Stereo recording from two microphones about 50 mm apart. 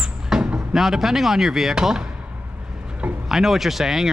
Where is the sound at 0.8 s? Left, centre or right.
Centre.